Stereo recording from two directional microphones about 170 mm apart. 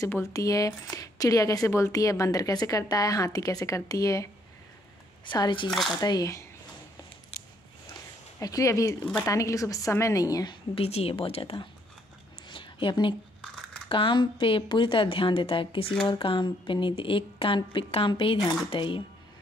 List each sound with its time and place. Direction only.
0.0 s speech: 20° left (ahead or behind)
5.7 s speech: centre (ahead or behind)
5.9 s speech: 25° left (ahead or behind)
8.4 s speech: 20° left (ahead or behind)
12.4 s a sound: 30° left (ahead or behind)
13.8 s a woman's voice: 30° left (ahead or behind)